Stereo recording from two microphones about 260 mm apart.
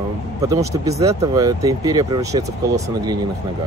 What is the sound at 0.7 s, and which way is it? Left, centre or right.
Speech, centre.